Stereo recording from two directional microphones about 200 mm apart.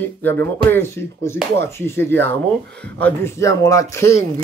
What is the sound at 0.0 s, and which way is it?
Speech, 10° left (ahead or behind).